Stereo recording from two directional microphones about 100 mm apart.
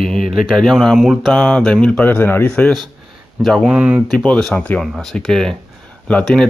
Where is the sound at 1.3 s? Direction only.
10° left (ahead or behind).